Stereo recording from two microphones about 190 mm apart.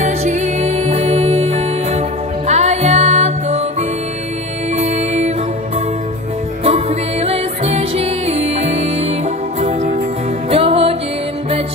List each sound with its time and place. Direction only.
0.0 s music: 35° right (ahead or behind)
4.7 s music: 35° right (ahead or behind)
6.6 s music: 30° right (ahead or behind)